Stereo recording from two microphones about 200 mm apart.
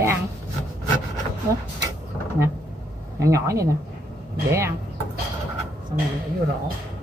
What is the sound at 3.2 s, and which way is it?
Speech, 15° right (ahead or behind).